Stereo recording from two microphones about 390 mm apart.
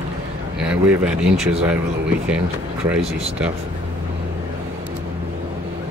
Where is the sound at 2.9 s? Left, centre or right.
Centre.